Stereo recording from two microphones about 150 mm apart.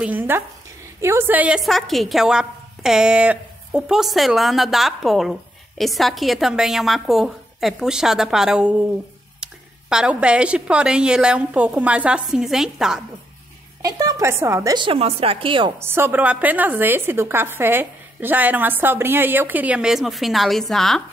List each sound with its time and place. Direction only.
0.0 s a woman's voice: 10° right (ahead or behind)
13.8 s a woman's voice: 25° right (ahead or behind)
15.8 s a woman's voice: 15° right (ahead or behind); by 21.0 s centre (ahead or behind)